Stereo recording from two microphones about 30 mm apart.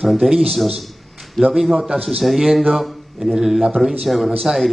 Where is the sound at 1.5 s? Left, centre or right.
Centre.